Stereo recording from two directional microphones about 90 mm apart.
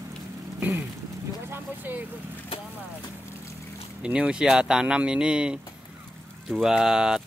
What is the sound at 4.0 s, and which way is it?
Speech, 10° right (ahead or behind).